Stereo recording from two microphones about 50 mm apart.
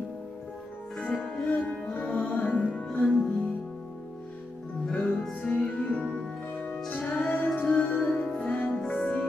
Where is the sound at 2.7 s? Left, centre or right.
Centre.